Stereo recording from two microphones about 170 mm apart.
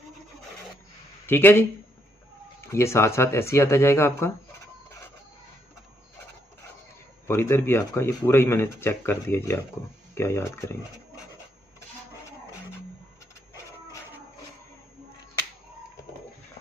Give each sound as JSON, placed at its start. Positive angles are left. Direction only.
{"t": 1.2, "sound": "speech", "side_deg": 10}
{"t": 2.7, "sound": "speech", "side_deg": 15}
{"t": 7.2, "sound": "speech", "side_deg": 15}